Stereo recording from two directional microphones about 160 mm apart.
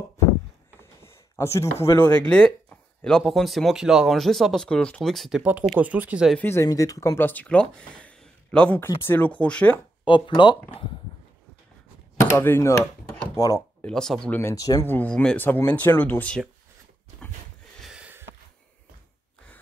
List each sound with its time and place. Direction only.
0.7 s speech: 15° left (ahead or behind); by 6.3 s 10° right (ahead or behind)
6.3 s speech: 15° left (ahead or behind)
10.0 s speech: 30° left (ahead or behind)
12.2 s speech: 15° left (ahead or behind)
17.7 s sniff: 5° right (ahead or behind)